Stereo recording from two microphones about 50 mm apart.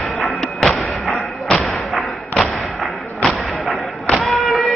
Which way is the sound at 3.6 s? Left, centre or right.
Centre.